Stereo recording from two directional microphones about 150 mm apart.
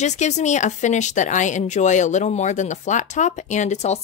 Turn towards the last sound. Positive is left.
turn(degrees=50)  # may be behind; listen again after turning